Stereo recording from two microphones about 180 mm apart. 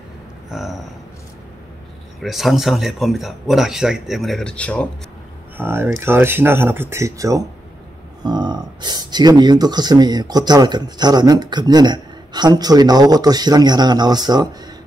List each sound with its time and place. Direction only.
0.5 s speech: centre (ahead or behind)
2.2 s speech: centre (ahead or behind)
5.6 s speech: 15° right (ahead or behind)